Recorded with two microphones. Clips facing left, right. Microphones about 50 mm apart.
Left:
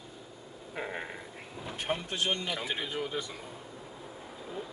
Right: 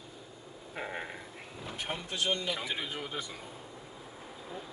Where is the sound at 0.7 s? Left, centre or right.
Centre.